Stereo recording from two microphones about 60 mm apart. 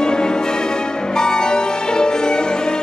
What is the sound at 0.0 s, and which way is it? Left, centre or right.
Music, centre.